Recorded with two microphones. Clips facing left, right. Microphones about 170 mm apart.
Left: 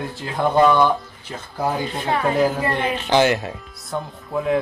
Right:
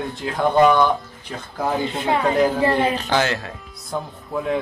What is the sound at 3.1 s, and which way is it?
Speech, 20° left (ahead or behind).